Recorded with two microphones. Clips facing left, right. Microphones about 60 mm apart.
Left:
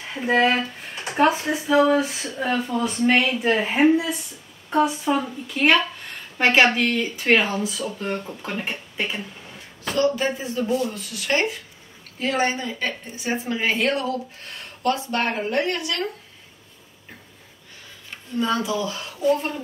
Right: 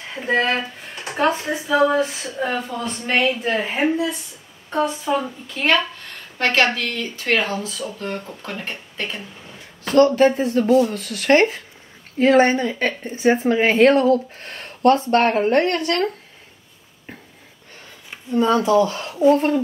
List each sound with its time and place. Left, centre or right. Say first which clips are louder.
0.1 s a woman's voice: left 1 dB; centre
9.9 s a woman's voice: right 8 dB; right
18.3 s a woman's voice: right 7 dB; right